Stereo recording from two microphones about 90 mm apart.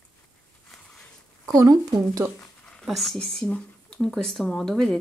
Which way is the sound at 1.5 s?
40° right (ahead or behind).